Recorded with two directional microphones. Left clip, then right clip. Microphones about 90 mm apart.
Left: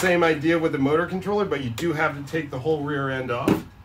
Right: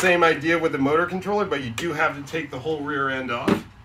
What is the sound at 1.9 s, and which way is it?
Speech, 15° left (ahead or behind).